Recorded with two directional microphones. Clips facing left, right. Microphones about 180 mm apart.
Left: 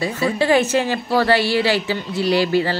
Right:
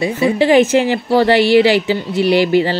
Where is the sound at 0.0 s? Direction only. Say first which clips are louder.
Right 5 dB; 20° right (ahead or behind).